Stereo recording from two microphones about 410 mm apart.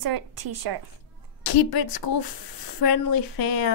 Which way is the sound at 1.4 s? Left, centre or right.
Left.